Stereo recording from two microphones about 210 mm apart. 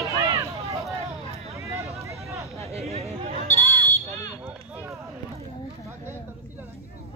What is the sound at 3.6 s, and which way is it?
Smoke detector, 15° right (ahead or behind).